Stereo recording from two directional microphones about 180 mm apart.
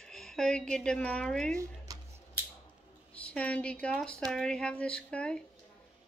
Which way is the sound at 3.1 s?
5° left (ahead or behind).